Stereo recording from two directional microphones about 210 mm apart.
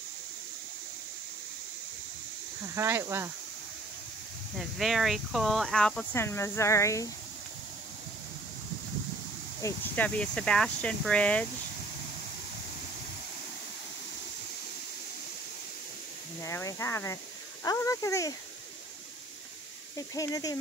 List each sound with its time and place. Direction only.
2.7 s speech: 10° right (ahead or behind)
4.6 s speech: centre (ahead or behind); by 7.1 s 15° left (ahead or behind)
9.6 s speech: 10° left (ahead or behind)
16.4 s speech: 15° left (ahead or behind)
20.0 s speech: 15° left (ahead or behind)